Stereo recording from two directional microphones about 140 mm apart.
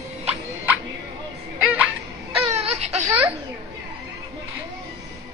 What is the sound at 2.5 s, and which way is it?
Baby cry, 50° right (ahead or behind).